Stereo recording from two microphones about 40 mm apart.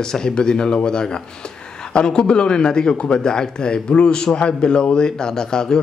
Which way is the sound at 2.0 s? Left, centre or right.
Left.